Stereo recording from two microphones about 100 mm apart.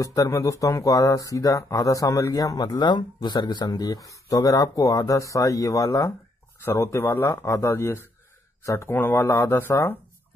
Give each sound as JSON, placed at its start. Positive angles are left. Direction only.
{"t": 0.0, "sound": "a man's voice", "side_deg": 35}